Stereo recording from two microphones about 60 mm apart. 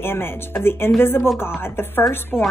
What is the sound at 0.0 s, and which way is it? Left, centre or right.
A woman's voice, left.